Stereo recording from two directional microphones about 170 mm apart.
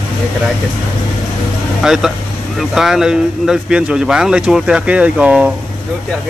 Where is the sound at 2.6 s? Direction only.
Centre (ahead or behind).